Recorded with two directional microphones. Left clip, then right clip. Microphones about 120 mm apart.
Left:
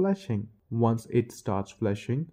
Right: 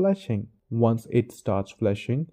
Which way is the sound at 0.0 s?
35° right (ahead or behind).